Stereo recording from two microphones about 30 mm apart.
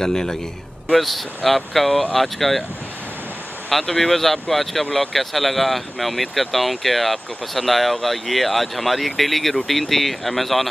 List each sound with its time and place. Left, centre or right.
0.0 s a man's voice: centre
0.9 s speech: centre
3.7 s speech: centre